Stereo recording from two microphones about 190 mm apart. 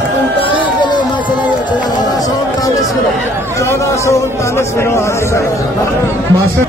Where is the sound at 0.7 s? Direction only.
25° left (ahead or behind).